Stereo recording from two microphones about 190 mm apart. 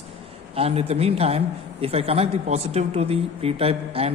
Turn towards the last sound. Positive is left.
turn(degrees=-30)  # may be behind; listen again after turning